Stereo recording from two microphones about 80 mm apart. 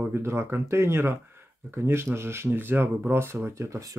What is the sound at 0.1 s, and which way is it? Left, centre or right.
Speech, right.